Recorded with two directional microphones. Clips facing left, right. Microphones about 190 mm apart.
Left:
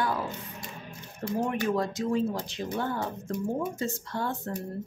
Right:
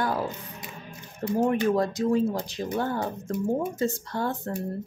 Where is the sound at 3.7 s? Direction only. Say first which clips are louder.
Right 4 dB; 40° right (ahead or behind).